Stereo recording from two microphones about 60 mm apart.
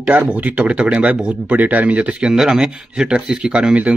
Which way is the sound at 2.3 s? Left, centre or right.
Centre.